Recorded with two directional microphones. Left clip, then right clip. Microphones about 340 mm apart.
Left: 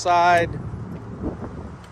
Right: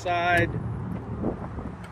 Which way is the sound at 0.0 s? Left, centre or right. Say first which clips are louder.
Left 7 dB; left.